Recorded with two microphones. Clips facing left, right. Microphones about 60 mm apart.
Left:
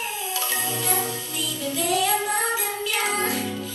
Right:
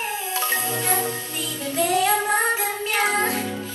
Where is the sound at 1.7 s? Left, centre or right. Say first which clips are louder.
Right 3 dB; right.